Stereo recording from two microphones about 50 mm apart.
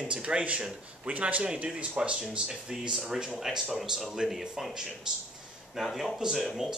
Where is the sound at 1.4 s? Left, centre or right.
Centre.